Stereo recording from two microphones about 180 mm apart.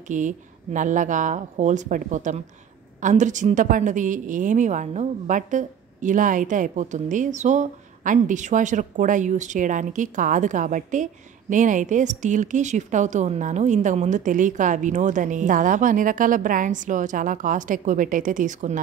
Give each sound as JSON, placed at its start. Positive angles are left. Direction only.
{"t": 0.1, "sound": "a woman's voice", "side_deg": -45}